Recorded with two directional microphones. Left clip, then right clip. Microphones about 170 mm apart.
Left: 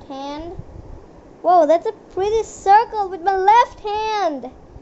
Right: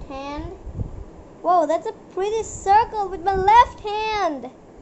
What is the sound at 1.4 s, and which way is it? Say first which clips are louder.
A woman's voice: left 5 dB; 30° left (ahead or behind).